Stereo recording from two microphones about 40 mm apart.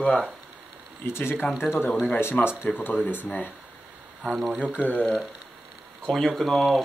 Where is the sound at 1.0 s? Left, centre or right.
Left.